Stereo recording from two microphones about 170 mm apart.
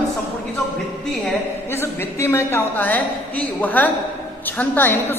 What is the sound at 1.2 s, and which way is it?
A woman's voice, 15° left (ahead or behind).